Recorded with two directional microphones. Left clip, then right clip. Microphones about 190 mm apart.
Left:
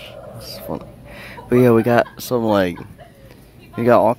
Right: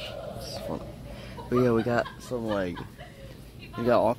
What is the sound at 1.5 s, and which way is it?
Speech, 35° left (ahead or behind).